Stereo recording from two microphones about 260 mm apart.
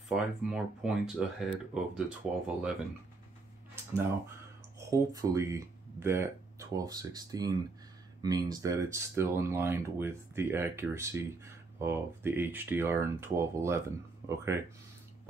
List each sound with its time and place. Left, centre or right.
0.1 s speech: centre
4.7 s speech: centre